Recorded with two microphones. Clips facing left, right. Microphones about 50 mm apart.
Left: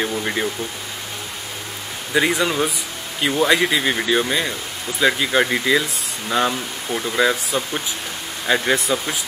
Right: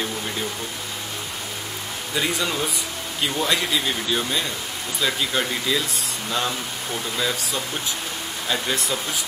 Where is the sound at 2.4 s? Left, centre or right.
Left.